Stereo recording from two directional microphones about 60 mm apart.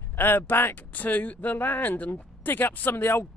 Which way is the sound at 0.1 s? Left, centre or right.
Left.